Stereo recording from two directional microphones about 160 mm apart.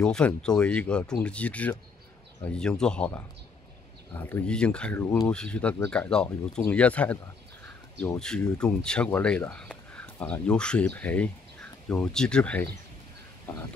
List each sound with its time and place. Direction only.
0.0 s speech: 5° left (ahead or behind)
8.2 s speech: 5° left (ahead or behind)